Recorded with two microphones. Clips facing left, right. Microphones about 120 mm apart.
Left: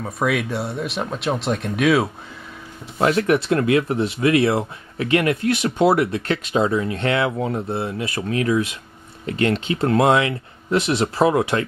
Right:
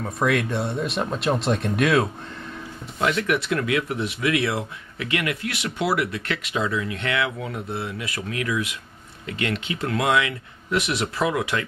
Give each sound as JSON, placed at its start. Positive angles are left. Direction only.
{"t": 0.0, "sound": "speech", "side_deg": 0}
{"t": 3.0, "sound": "speech", "side_deg": 35}